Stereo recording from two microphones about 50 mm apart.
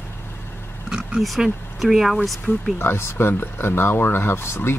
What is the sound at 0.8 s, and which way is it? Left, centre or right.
Oink, centre.